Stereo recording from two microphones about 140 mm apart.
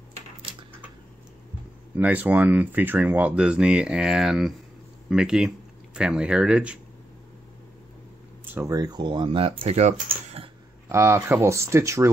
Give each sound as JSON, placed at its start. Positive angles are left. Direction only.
{"t": 2.0, "sound": "speech", "side_deg": -10}
{"t": 8.5, "sound": "speech", "side_deg": -25}
{"t": 10.9, "sound": "speech", "side_deg": -15}